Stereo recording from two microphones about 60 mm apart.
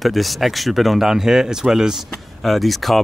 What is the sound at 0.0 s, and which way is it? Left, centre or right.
Speech, centre.